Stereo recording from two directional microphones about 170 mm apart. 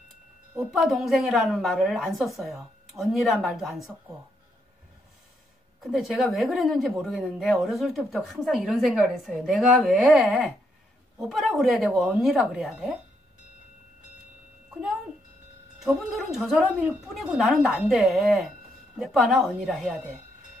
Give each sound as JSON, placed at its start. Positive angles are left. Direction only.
{"t": 0.6, "sound": "a woman's voice", "side_deg": 0}
{"t": 5.8, "sound": "a woman's voice", "side_deg": 0}
{"t": 14.7, "sound": "music", "side_deg": -5}
{"t": 15.8, "sound": "a woman's voice", "side_deg": 0}